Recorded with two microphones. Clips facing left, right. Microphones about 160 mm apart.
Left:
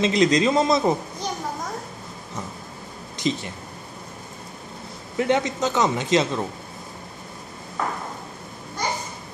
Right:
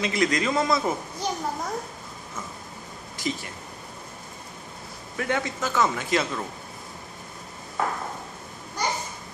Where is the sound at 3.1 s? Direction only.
20° left (ahead or behind).